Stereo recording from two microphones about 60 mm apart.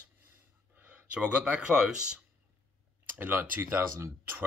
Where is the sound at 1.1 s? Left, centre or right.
Right.